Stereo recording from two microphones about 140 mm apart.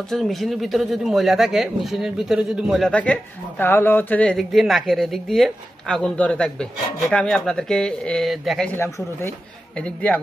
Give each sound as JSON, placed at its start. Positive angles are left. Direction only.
{"t": 0.1, "sound": "speech", "side_deg": 0}
{"t": 3.0, "sound": "speech", "side_deg": 10}
{"t": 8.7, "sound": "speech", "side_deg": 20}